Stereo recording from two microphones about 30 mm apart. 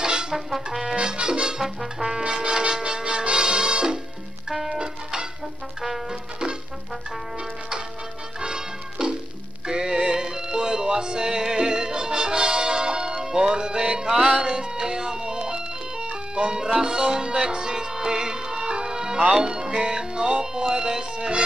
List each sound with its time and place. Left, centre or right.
0.0 s trumpet: right
0.9 s music: right
1.2 s music: right
1.6 s brass instrument: centre
2.2 s music: right
4.5 s music: centre
8.4 s music: right
14.3 s ice cream truck: right
16.7 s music: right
19.3 s speech: right